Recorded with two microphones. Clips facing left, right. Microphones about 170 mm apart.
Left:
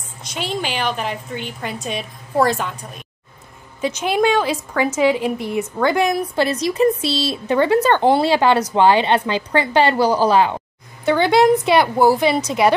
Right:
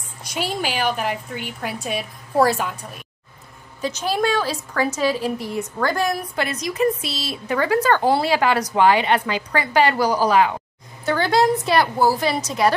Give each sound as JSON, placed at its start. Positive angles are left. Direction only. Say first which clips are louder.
{"t": 0.2, "sound": "a woman's voice", "louder": "even", "side_deg": -10}
{"t": 3.8, "sound": "a woman's voice", "louder": "left 4 dB", "side_deg": 20}